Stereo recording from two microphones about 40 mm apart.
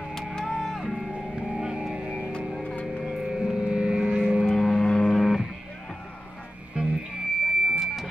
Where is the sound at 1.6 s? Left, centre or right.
Centre.